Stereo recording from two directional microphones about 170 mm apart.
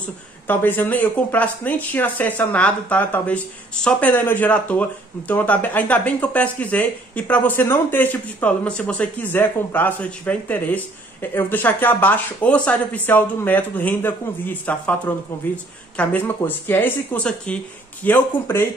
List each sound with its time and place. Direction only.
0.5 s speech: 10° left (ahead or behind)